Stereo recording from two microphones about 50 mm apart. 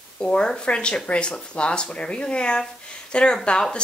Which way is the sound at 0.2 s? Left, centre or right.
Centre.